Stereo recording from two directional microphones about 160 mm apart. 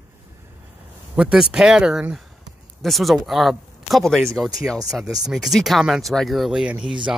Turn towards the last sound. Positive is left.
turn(degrees=-5)  # may be behind; listen again after turning